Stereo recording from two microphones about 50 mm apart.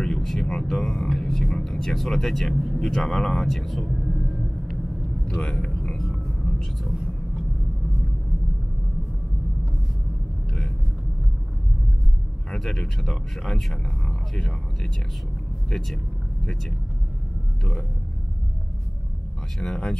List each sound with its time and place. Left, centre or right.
0.0 s a sound: centre
0.7 s speech: centre
5.2 s speech: left
5.7 s vehicle: centre
12.4 s speech: centre
19.6 s speech: centre